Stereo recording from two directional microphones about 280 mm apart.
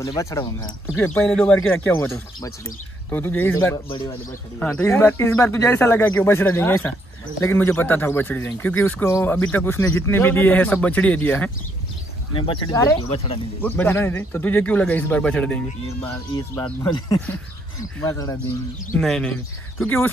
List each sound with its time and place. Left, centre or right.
0.0 s speech: centre